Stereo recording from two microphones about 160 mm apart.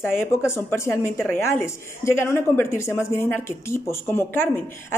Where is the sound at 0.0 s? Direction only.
15° left (ahead or behind).